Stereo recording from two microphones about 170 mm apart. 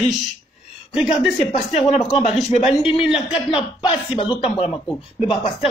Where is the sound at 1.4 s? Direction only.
40° left (ahead or behind).